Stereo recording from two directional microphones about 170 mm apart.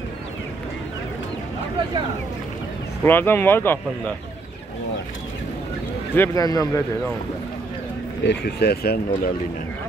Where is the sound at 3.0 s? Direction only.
10° left (ahead or behind).